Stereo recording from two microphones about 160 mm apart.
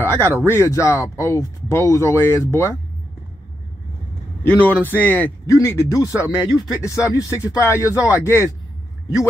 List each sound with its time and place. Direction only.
0.0 s speech: 15° left (ahead or behind)
4.4 s a man's voice: 10° left (ahead or behind)